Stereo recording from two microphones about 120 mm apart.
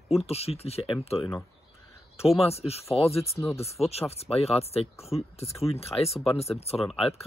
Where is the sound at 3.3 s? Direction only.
25° left (ahead or behind).